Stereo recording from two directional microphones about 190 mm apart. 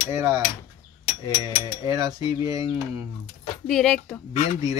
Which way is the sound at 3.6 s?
5° left (ahead or behind).